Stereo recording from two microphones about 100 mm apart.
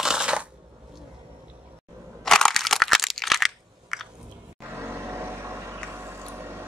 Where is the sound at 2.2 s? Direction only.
5° left (ahead or behind).